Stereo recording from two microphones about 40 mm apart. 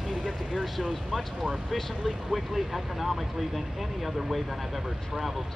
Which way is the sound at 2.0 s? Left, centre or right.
Centre.